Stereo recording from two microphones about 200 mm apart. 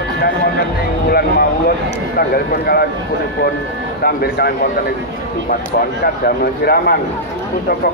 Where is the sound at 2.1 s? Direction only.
50° left (ahead or behind).